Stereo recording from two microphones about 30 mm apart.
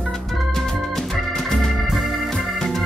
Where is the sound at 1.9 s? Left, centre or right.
Centre.